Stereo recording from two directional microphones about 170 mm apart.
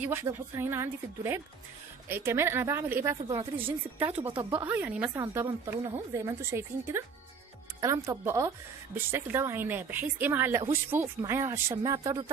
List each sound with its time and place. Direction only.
0.0 s speech: 15° right (ahead or behind)